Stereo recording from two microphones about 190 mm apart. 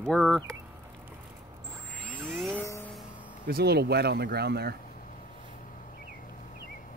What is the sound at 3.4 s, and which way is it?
Speech, 55° right (ahead or behind).